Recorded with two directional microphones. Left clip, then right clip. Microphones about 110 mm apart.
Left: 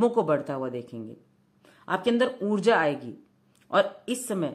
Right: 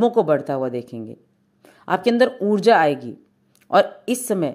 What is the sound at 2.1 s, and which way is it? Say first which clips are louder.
Speech: right 8 dB; 35° right (ahead or behind).